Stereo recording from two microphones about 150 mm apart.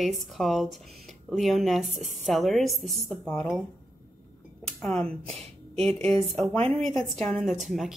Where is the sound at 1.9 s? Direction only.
50° right (ahead or behind).